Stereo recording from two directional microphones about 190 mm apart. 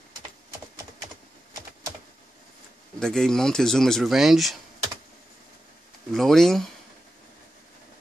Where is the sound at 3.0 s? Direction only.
5° left (ahead or behind).